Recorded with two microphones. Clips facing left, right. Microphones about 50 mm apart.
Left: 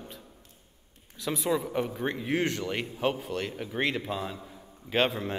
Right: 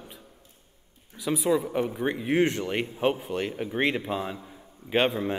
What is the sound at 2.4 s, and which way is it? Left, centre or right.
A man's voice, right.